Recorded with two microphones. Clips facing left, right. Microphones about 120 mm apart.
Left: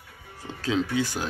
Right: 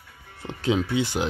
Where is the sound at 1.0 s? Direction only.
20° right (ahead or behind).